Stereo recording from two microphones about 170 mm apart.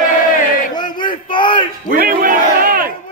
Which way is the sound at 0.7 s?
25° left (ahead or behind).